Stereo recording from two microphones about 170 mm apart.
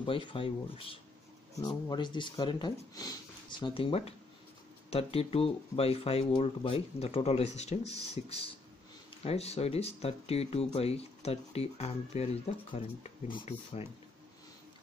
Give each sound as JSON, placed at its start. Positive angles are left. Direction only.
{"t": 0.0, "sound": "speech", "side_deg": 30}